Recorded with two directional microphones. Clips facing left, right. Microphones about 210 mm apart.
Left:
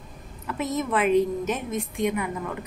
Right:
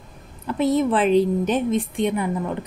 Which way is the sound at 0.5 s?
30° right (ahead or behind).